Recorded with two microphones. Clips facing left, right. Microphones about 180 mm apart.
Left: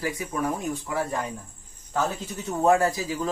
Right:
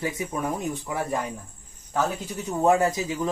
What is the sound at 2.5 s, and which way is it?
Speech, 15° right (ahead or behind).